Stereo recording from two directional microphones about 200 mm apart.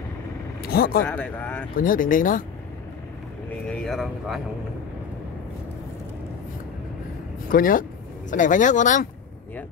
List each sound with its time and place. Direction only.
0.6 s vehicle: 50° left (ahead or behind)
1.0 s speech: 10° left (ahead or behind)
1.8 s speech: 45° left (ahead or behind)
3.6 s speech: 5° left (ahead or behind)
7.4 s speech: 45° left (ahead or behind)